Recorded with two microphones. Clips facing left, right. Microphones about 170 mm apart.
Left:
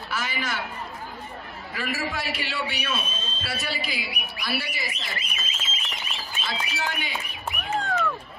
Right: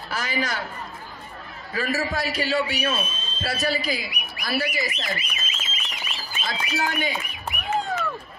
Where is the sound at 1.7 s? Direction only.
40° right (ahead or behind).